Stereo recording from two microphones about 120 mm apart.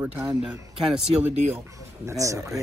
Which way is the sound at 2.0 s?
25° right (ahead or behind).